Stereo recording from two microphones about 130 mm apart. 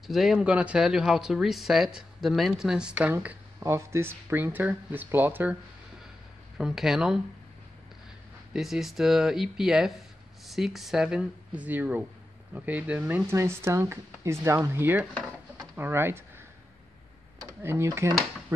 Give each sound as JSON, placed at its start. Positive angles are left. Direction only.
{"t": 0.0, "sound": "speech", "side_deg": 0}
{"t": 6.6, "sound": "speech", "side_deg": -5}
{"t": 8.5, "sound": "speech", "side_deg": -5}
{"t": 13.4, "sound": "speech", "side_deg": -20}
{"t": 17.5, "sound": "speech", "side_deg": -20}